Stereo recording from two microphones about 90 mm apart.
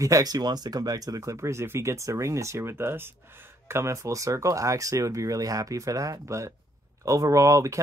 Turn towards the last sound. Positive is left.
turn(degrees=-35)  # may be behind; listen again after turning